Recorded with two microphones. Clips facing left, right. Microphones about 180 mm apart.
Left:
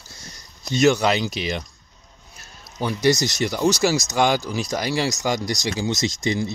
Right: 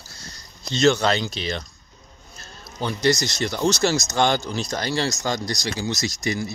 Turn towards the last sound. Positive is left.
turn(degrees=25)  # may be behind; listen again after turning